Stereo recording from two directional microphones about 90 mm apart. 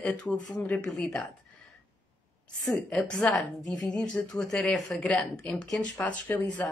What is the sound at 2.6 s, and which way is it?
A woman's voice, 5° left (ahead or behind).